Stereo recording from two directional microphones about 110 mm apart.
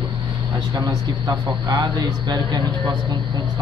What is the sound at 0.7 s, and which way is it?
Speech, 35° right (ahead or behind).